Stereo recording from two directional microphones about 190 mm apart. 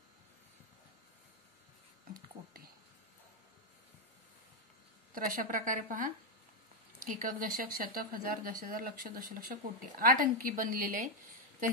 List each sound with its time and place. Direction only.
5.1 s speech: 45° right (ahead or behind)